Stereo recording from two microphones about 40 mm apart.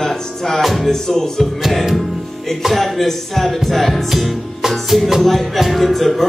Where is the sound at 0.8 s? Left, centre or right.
Centre.